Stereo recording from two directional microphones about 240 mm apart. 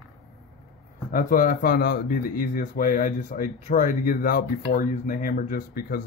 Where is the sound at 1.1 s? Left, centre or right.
Left.